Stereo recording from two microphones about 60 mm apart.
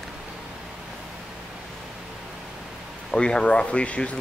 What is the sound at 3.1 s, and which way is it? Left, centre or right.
Speech, centre.